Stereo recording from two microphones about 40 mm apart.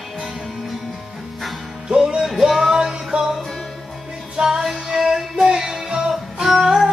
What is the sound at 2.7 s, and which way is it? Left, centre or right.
Music, centre.